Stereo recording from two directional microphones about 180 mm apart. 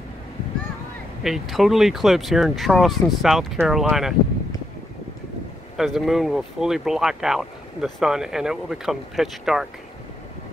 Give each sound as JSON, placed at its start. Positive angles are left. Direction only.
{"t": 1.2, "sound": "speech", "side_deg": 0}
{"t": 5.8, "sound": "speech", "side_deg": 0}